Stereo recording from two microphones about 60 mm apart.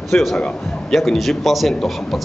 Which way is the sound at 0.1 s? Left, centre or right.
Centre.